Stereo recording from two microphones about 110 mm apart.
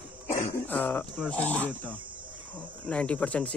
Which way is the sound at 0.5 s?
15° left (ahead or behind).